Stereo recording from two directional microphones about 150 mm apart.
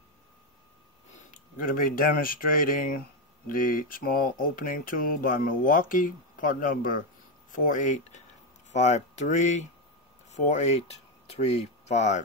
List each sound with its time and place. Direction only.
1.3 s speech: 65° left (ahead or behind)
7.6 s speech: 55° left (ahead or behind)